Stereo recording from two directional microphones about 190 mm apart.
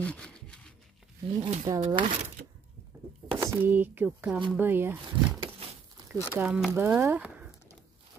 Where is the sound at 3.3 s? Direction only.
10° right (ahead or behind).